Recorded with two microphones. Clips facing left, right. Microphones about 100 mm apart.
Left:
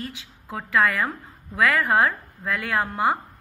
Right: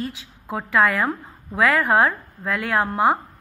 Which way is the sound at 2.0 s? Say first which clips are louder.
Right 2 dB; 5° right (ahead or behind).